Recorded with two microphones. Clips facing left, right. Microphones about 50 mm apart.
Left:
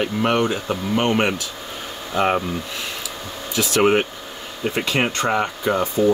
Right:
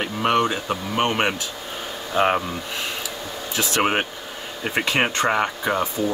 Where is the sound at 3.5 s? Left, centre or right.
Right.